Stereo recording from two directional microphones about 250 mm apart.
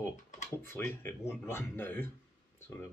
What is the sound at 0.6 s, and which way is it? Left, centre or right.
Speech, centre.